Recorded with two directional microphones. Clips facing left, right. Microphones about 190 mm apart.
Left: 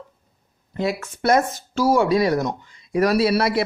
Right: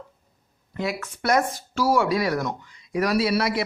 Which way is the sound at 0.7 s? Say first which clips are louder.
Left 4 dB; 25° left (ahead or behind).